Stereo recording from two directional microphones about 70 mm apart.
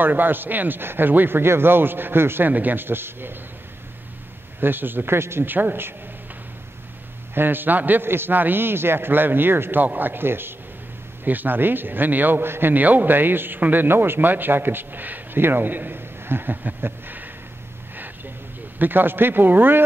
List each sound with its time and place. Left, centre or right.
0.0 s a man's voice: right
4.6 s a man's voice: right
7.3 s a man's voice: right
17.9 s a sound: right
18.8 s a man's voice: right